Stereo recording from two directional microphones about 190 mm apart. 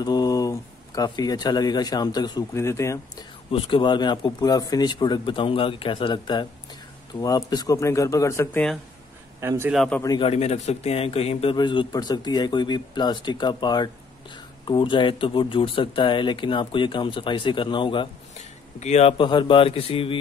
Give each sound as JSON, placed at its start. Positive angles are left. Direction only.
{"t": 0.0, "sound": "speech", "side_deg": 20}
{"t": 3.5, "sound": "speech", "side_deg": 25}
{"t": 9.4, "sound": "a man's voice", "side_deg": -15}
{"t": 9.8, "sound": "speech", "side_deg": 5}
{"t": 10.0, "sound": "speech", "side_deg": 25}
{"t": 18.3, "sound": "speech", "side_deg": 35}